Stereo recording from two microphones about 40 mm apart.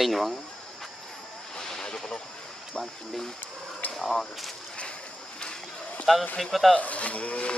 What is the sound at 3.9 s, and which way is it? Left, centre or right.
Speech, centre.